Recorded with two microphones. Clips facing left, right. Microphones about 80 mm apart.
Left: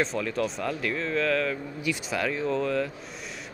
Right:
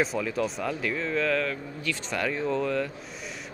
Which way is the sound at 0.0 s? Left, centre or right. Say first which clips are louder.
Even; centre.